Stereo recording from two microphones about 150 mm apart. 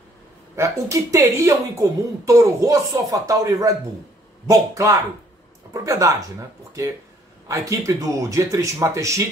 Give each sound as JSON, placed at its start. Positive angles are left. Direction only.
{"t": 0.6, "sound": "speech", "side_deg": -20}